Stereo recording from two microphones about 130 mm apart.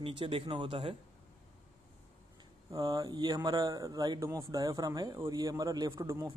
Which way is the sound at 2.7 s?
30° right (ahead or behind).